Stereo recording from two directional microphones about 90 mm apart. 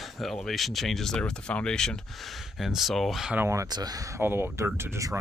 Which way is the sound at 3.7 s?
45° right (ahead or behind).